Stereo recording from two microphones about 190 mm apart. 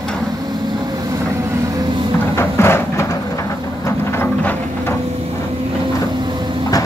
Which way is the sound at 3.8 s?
10° left (ahead or behind).